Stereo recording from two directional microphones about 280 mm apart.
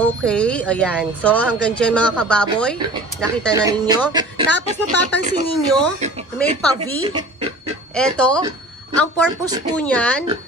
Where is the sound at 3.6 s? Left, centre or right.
Centre.